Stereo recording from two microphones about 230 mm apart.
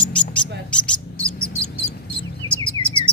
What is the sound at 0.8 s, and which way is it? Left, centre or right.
Bird, centre.